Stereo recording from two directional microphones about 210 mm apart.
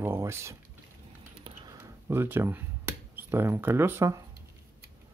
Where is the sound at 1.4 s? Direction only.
20° right (ahead or behind).